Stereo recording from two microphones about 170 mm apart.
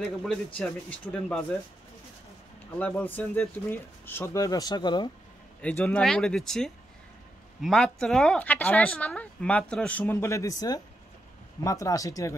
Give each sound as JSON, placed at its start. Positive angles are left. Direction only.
{"t": 0.0, "sound": "speech", "side_deg": 0}
{"t": 2.8, "sound": "speech", "side_deg": 10}
{"t": 5.6, "sound": "speech", "side_deg": 10}